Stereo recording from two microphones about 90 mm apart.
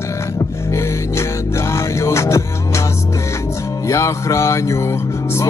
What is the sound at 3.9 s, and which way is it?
Mantra, 35° left (ahead or behind).